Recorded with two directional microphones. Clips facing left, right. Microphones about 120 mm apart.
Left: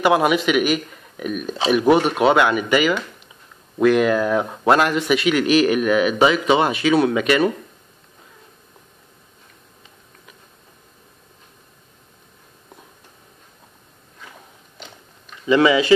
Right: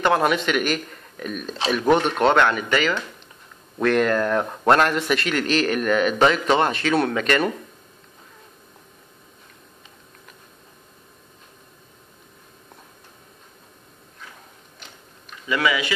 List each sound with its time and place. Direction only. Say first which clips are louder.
0.0 s speech: left 3 dB; 10° left (ahead or behind)
15.4 s speech: left 8 dB; 25° left (ahead or behind)